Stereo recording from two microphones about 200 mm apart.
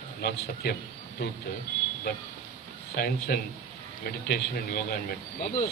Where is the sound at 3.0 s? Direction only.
50° left (ahead or behind).